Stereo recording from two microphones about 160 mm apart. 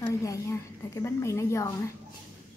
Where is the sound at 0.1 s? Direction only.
20° left (ahead or behind).